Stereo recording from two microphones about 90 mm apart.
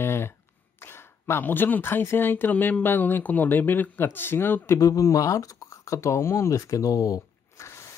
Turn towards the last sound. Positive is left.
turn(degrees=35)  # may be behind; listen again after turning